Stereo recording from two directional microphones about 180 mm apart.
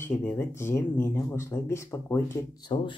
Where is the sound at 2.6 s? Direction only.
25° left (ahead or behind).